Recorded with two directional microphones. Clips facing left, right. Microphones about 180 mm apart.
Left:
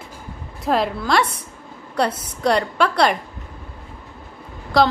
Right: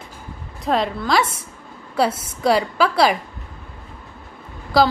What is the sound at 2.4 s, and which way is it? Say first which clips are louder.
Speech: right 1 dB; 5° right (ahead or behind).